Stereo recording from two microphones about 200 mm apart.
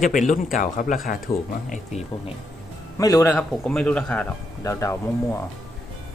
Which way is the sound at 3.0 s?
15° left (ahead or behind).